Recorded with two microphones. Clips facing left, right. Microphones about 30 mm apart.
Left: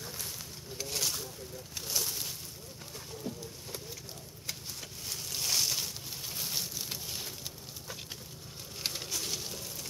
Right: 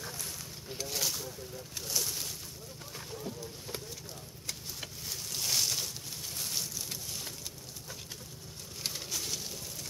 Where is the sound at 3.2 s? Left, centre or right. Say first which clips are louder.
Left 3 dB; centre.